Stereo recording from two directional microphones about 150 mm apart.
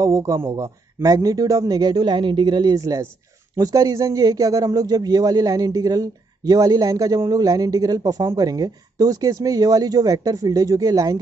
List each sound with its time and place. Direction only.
0.0 s a man's voice: 20° right (ahead or behind)